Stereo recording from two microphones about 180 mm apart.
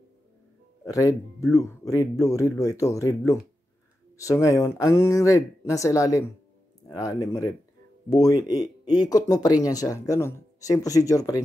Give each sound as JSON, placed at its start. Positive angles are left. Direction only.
{"t": 0.8, "sound": "speech", "side_deg": 20}